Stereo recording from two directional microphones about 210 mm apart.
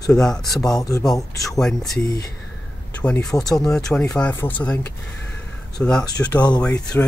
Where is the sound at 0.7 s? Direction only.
15° left (ahead or behind).